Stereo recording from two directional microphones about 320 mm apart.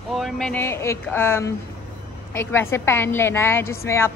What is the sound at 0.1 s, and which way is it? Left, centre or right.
Speech, centre.